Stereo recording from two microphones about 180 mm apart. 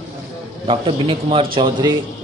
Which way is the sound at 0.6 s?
30° right (ahead or behind).